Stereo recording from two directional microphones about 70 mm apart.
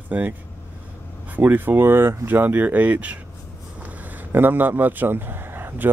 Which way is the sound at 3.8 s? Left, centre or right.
Right.